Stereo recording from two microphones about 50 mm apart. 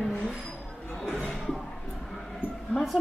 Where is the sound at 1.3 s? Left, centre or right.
Centre.